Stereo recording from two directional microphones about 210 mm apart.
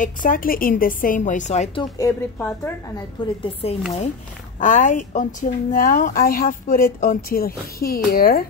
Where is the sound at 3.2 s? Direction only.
20° left (ahead or behind).